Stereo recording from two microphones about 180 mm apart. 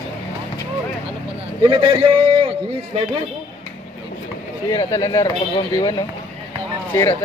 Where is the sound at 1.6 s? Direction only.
25° right (ahead or behind).